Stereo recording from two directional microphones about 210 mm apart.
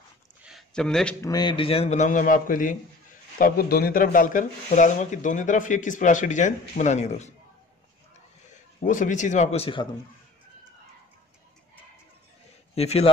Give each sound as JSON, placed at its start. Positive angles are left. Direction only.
{"t": 0.4, "sound": "a sound", "side_deg": 0}
{"t": 1.2, "sound": "speech", "side_deg": 20}
{"t": 8.8, "sound": "speech", "side_deg": 35}
{"t": 12.7, "sound": "a man's voice", "side_deg": 30}